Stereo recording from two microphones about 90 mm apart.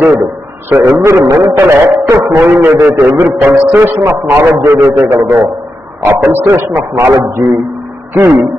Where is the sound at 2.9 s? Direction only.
35° right (ahead or behind).